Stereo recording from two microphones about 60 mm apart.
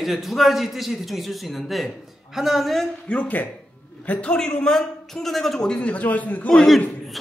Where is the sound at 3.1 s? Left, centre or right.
Left.